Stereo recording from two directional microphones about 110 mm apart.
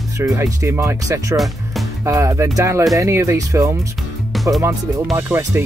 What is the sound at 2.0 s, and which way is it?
Speech, 25° right (ahead or behind).